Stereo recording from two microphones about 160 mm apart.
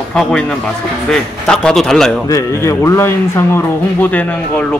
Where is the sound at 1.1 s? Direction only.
5° left (ahead or behind).